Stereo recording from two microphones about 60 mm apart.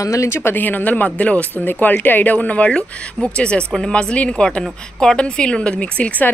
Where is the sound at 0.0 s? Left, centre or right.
Left.